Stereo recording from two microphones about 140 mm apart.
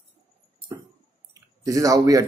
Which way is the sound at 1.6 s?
25° right (ahead or behind).